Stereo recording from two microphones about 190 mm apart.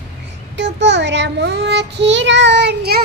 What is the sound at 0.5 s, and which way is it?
Child singing, 70° right (ahead or behind).